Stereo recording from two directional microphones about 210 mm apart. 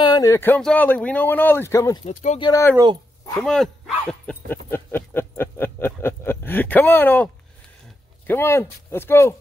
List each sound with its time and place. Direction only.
0.0 s speech: 20° left (ahead or behind)
2.0 s speech: 30° left (ahead or behind)
2.4 s speech: 15° left (ahead or behind)
3.3 s speech: centre (ahead or behind)
8.3 s speech: 10° left (ahead or behind)